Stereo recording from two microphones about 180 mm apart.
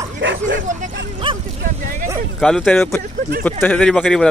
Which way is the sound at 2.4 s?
5° left (ahead or behind).